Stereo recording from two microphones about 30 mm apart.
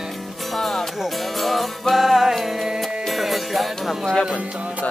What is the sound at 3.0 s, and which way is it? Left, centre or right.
Music, centre.